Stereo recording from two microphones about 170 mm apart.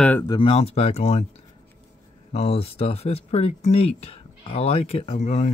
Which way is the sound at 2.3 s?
35° left (ahead or behind).